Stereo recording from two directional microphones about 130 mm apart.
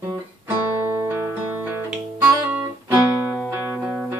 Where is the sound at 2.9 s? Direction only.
15° right (ahead or behind).